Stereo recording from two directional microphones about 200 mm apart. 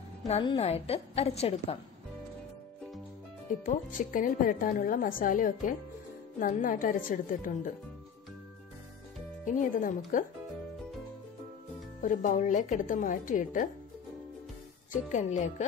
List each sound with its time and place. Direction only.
0.3 s a woman's voice: 25° left (ahead or behind)
3.6 s a woman's voice: 40° left (ahead or behind)
9.4 s a woman's voice: 40° left (ahead or behind)
12.0 s a woman's voice: 40° left (ahead or behind)
14.9 s a woman's voice: 40° left (ahead or behind)